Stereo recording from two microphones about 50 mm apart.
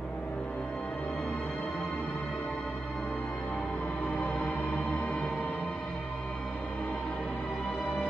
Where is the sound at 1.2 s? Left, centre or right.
Centre.